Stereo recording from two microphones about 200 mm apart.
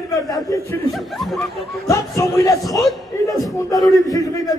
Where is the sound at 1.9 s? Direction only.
15° left (ahead or behind).